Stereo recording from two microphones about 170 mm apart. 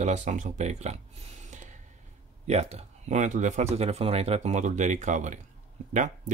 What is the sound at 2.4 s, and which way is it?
Speech, 40° right (ahead or behind).